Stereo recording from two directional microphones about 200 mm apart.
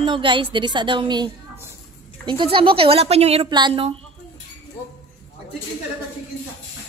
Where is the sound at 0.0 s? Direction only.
25° right (ahead or behind).